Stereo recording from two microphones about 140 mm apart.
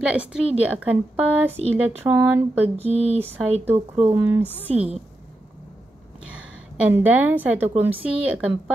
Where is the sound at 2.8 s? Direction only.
45° right (ahead or behind).